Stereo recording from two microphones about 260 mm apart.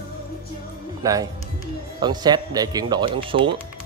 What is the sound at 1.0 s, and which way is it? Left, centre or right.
Speech, centre.